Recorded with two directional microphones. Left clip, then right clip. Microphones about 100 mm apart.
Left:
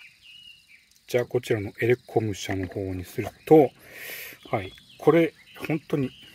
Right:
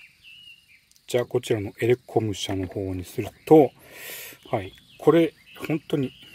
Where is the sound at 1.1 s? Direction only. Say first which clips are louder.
Right 1 dB; 25° right (ahead or behind).